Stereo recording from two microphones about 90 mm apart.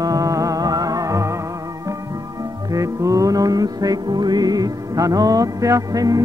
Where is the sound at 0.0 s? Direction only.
40° right (ahead or behind).